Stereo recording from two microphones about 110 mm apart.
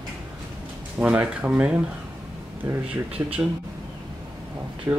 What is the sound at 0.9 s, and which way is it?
Speech, 15° right (ahead or behind).